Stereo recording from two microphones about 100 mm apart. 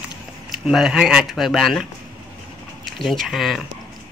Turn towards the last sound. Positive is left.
turn(degrees=0)  # may be behind; listen again after turning